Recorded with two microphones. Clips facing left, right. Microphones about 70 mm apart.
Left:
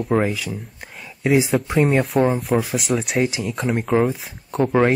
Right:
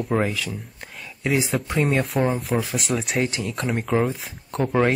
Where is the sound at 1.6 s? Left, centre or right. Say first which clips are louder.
Left 4 dB; left.